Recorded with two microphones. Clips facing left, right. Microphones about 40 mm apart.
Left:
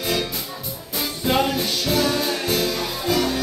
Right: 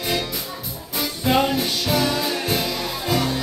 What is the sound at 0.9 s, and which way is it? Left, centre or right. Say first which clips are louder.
Music: right 1 dB; centre.